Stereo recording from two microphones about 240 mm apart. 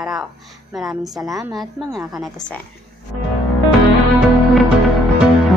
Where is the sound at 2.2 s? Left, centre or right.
Centre.